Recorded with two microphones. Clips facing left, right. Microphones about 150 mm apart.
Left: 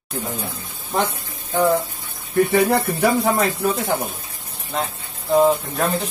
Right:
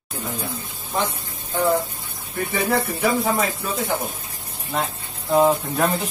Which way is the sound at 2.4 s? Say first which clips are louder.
Left 5 dB; 65° left (ahead or behind).